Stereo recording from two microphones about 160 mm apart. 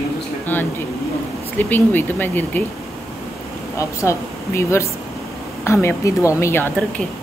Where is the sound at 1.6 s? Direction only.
10° left (ahead or behind).